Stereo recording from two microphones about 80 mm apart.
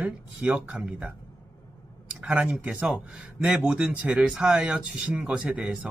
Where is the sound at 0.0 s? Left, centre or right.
Centre.